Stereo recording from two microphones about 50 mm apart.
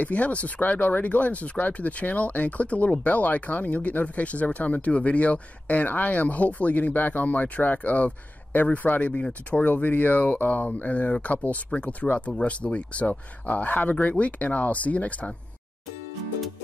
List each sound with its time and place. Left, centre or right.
0.0 s speech: left